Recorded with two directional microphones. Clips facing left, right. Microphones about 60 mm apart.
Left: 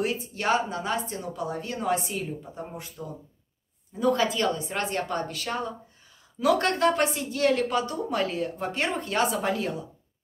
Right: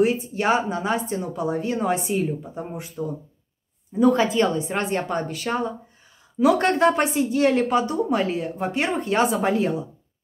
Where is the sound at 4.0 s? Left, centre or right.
Right.